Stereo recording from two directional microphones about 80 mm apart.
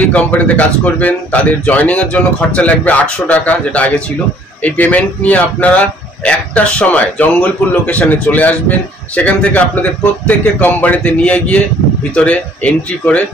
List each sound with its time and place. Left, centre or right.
0.0 s speech: centre